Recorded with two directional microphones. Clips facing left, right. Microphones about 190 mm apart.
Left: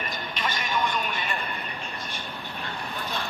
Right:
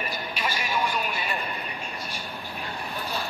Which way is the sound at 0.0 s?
10° right (ahead or behind).